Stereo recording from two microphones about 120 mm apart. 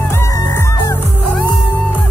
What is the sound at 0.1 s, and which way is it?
Music, 20° left (ahead or behind).